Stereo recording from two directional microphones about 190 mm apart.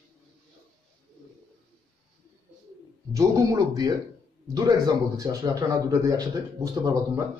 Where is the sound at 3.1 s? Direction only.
15° right (ahead or behind).